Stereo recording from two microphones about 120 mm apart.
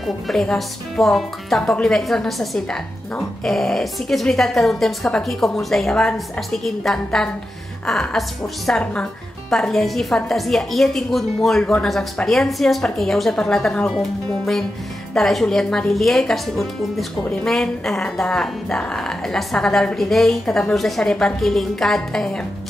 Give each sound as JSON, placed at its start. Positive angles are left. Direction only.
{"t": 0.0, "sound": "speech", "side_deg": 5}